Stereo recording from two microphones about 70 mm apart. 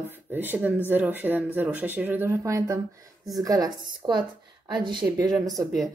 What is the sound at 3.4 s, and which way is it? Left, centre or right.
A woman's voice, right.